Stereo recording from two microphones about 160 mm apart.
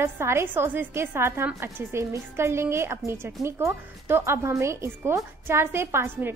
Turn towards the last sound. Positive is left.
turn(degrees=-15)  # may be behind; listen again after turning